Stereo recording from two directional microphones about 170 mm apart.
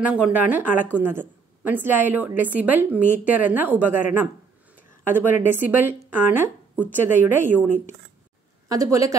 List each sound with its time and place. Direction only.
0.0 s a woman's voice: 10° right (ahead or behind)